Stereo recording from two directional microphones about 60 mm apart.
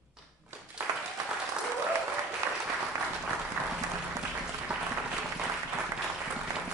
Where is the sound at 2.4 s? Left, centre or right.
Right.